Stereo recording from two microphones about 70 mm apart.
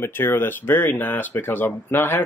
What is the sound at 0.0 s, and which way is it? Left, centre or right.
Speech, left.